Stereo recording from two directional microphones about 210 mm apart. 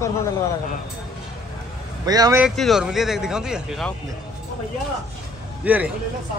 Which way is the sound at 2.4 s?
Centre (ahead or behind).